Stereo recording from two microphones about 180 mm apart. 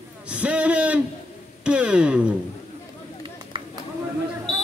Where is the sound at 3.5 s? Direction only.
30° right (ahead or behind).